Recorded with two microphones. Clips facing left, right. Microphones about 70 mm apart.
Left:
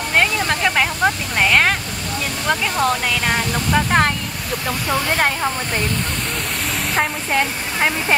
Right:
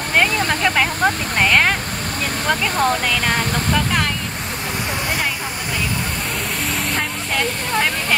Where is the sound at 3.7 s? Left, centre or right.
Left.